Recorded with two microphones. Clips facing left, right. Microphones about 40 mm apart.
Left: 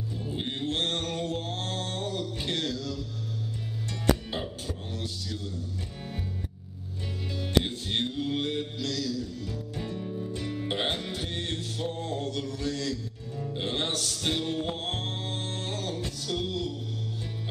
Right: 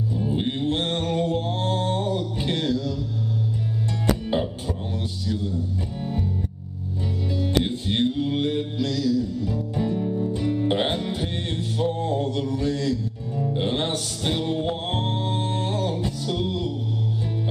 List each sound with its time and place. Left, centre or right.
0.2 s music: centre
4.3 s music: centre
7.6 s mantra: centre
13.4 s music: centre